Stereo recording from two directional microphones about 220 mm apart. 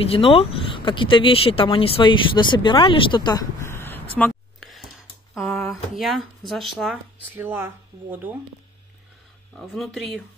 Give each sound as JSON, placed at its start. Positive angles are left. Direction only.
{"t": 0.0, "sound": "speech", "side_deg": 25}
{"t": 4.2, "sound": "a sound", "side_deg": 0}
{"t": 5.3, "sound": "speech", "side_deg": 0}
{"t": 9.6, "sound": "speech", "side_deg": 0}